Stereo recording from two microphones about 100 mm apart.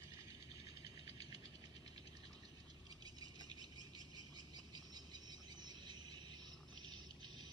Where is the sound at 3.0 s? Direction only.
45° right (ahead or behind).